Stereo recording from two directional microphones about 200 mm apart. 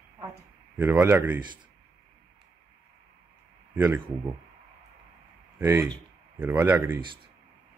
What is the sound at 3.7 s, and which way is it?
Speech, 10° right (ahead or behind).